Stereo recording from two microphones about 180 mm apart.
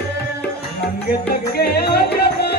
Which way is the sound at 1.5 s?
60° left (ahead or behind).